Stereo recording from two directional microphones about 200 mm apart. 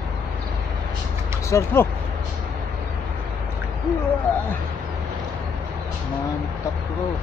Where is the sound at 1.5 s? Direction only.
10° left (ahead or behind).